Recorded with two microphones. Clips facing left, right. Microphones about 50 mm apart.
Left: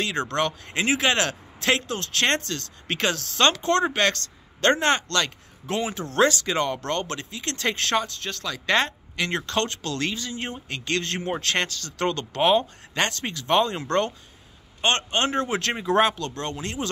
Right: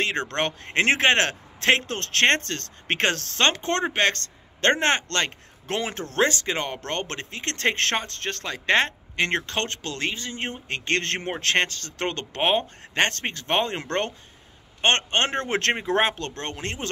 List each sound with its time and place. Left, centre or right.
0.0 s speech: right
3.4 s speech: right
5.8 s speech: right
6.1 s speech: right
14.8 s speech: right